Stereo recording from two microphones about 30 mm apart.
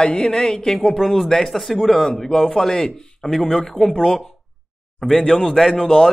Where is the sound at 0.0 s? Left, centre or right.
Left.